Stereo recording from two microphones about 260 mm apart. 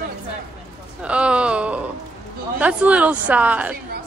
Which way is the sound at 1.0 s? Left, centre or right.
Centre.